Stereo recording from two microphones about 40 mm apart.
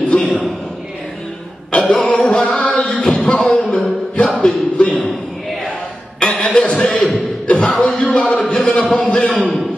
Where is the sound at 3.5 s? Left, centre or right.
Left.